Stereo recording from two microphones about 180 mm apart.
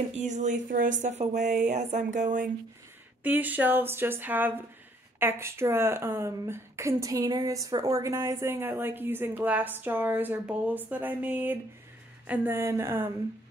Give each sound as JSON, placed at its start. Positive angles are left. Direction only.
{"t": 0.1, "sound": "speech", "side_deg": -40}
{"t": 3.3, "sound": "speech", "side_deg": -10}